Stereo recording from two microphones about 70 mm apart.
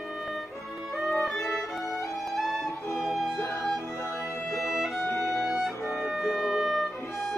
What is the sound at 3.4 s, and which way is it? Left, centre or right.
Music, left.